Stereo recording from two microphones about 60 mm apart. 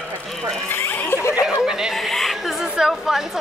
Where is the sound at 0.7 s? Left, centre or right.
Left.